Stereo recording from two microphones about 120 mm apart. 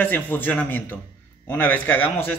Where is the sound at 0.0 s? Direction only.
15° left (ahead or behind).